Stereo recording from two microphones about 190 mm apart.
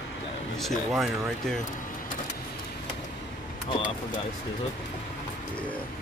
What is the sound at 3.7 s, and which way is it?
Speech, 25° left (ahead or behind).